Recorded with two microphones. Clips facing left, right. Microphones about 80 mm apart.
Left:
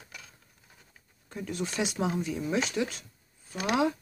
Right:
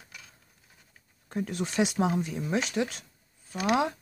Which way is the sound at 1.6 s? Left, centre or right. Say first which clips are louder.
Right 3 dB; right.